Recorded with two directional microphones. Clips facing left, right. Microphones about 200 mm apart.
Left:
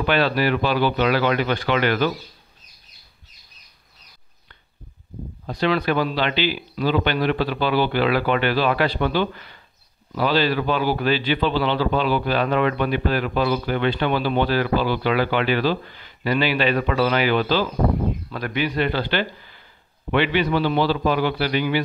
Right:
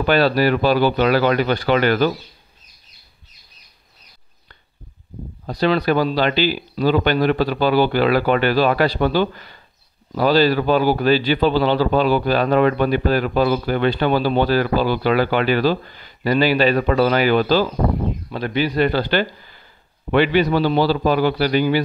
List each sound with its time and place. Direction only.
0.0 s a man's voice: 40° right (ahead or behind)
5.5 s a man's voice: 40° right (ahead or behind)
18.3 s a man's voice: 30° right (ahead or behind)